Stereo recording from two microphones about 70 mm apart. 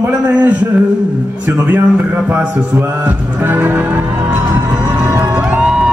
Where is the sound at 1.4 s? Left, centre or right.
Right.